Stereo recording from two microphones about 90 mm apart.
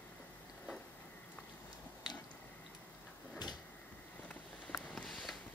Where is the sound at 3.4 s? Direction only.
55° left (ahead or behind).